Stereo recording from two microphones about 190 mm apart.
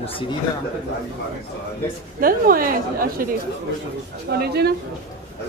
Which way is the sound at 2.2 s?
50° right (ahead or behind).